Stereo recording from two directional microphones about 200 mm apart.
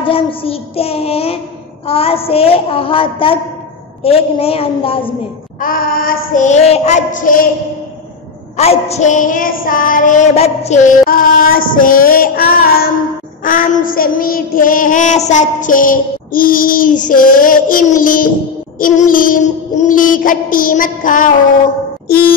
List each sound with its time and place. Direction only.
0.0 s a woman's voice: 25° left (ahead or behind)
5.6 s child singing: 45° left (ahead or behind)
8.5 s child singing: 30° left (ahead or behind)
22.0 s music: 50° left (ahead or behind)